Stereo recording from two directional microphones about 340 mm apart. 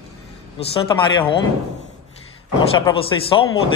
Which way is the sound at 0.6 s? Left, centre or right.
Centre.